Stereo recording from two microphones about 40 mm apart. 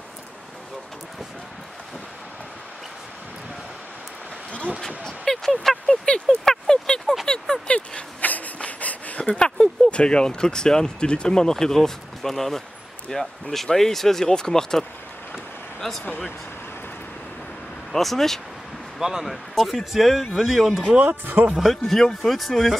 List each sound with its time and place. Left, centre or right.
4.5 s vehicle: left
4.7 s a sound: centre
5.9 s a sound: left
6.2 s a sound: centre
7.6 s dog: left
8.2 s a sound: left
9.2 s speech: left
17.9 s speech: centre
18.9 s speech: centre
19.2 s speech: centre
21.0 s speech: right
21.7 s speech: centre